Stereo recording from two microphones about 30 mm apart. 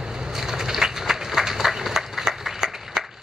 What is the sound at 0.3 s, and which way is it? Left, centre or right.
Run, centre.